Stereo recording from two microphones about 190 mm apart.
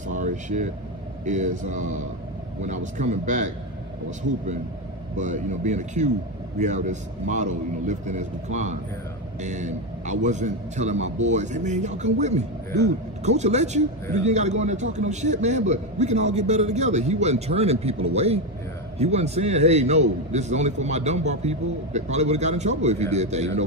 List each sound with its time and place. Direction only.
0.1 s air conditioning: 40° right (ahead or behind)
1.2 s a man's voice: 40° right (ahead or behind)
5.1 s a man's voice: 40° right (ahead or behind)